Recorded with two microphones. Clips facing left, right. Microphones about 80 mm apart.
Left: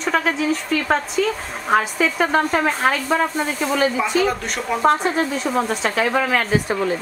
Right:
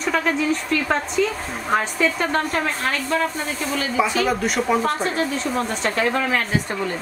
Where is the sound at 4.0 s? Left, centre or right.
Centre.